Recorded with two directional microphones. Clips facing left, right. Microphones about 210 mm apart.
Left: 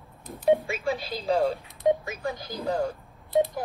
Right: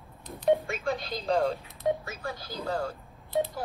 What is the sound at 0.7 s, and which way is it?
Speech, 5° left (ahead or behind).